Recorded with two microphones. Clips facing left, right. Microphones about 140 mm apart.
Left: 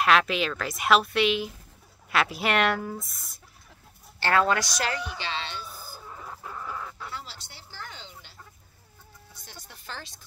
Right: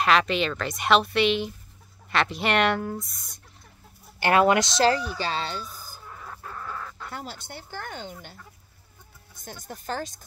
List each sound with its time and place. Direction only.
0.0 s a woman's voice: centre (ahead or behind)
4.2 s speech: 20° right (ahead or behind); by 5.7 s 40° right (ahead or behind)
6.2 s chicken: 15° left (ahead or behind)
7.1 s speech: 50° right (ahead or behind)